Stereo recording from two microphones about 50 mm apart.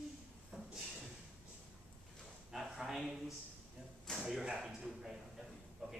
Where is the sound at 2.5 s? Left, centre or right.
Centre.